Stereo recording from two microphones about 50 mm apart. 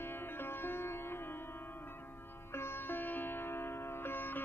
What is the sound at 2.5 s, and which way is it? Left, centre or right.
Music, left.